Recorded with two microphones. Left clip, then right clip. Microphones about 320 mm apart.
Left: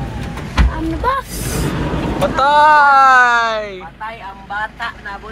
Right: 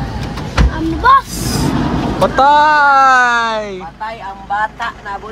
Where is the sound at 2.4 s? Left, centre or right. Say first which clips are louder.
Even; centre.